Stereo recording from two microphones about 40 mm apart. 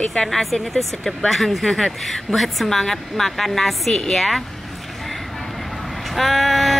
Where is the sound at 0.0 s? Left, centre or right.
Centre.